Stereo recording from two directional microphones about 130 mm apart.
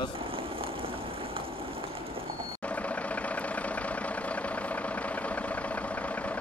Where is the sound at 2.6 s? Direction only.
10° left (ahead or behind).